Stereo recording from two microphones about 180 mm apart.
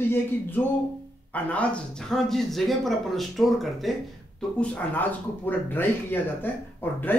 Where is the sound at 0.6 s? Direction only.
10° left (ahead or behind).